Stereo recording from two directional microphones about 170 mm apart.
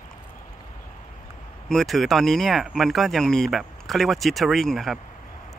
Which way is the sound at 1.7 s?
Centre (ahead or behind).